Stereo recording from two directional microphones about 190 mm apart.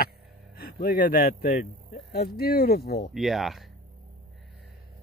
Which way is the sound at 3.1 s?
Centre (ahead or behind).